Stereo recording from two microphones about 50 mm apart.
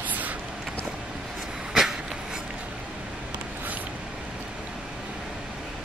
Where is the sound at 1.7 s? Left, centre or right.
Centre.